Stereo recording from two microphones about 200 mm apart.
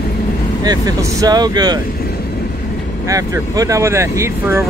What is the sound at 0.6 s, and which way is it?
Speech, 20° right (ahead or behind).